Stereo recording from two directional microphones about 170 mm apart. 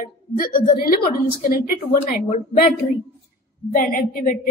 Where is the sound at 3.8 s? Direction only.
55° left (ahead or behind).